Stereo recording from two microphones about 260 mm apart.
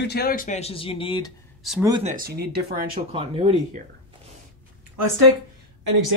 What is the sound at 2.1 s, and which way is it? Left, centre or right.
Speech, right.